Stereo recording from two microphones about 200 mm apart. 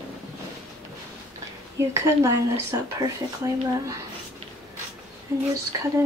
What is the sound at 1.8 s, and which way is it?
Speech, 15° right (ahead or behind).